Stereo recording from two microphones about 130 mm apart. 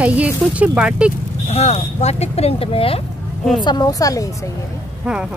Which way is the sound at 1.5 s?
55° left (ahead or behind).